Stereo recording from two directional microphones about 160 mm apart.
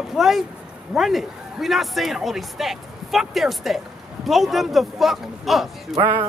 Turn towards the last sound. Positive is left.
turn(degrees=-30)  # may be behind; listen again after turning